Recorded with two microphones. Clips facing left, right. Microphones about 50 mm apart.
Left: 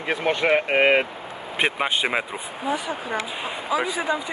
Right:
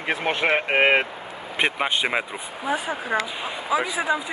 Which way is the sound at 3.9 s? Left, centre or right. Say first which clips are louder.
Right 1 dB; centre.